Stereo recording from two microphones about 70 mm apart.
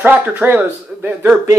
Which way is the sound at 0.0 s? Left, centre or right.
Right.